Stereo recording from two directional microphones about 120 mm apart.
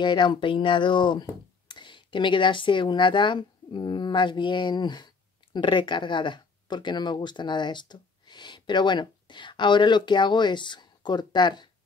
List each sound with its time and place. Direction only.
0.0 s speech: 40° left (ahead or behind)